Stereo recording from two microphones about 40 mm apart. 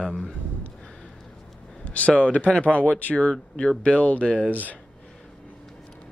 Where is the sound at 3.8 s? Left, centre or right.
Left.